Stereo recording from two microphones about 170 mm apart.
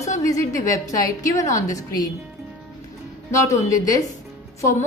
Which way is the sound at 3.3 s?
20° left (ahead or behind).